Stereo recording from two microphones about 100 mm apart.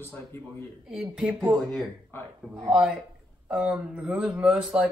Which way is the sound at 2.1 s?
25° left (ahead or behind).